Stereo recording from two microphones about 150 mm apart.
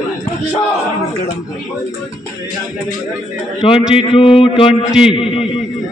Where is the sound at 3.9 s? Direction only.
35° left (ahead or behind).